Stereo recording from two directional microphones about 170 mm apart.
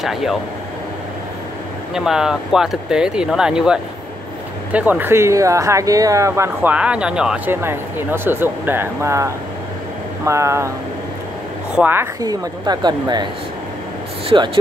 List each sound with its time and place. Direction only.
0.0 s speech: centre (ahead or behind)
2.0 s speech: 5° right (ahead or behind)
11.7 s a woman's voice: 10° right (ahead or behind)
14.3 s a woman's voice: 30° right (ahead or behind)